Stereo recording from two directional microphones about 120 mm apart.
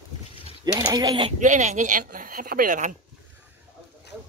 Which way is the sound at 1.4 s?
90° right.